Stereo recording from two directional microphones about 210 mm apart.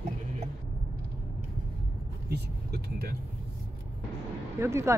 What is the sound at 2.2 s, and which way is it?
Speech, 50° right (ahead or behind).